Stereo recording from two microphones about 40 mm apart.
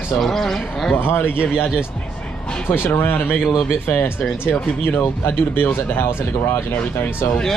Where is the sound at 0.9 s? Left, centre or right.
Left.